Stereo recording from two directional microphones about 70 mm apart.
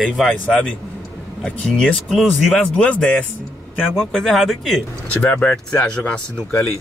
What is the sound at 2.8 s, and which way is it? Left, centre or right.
Speech, centre.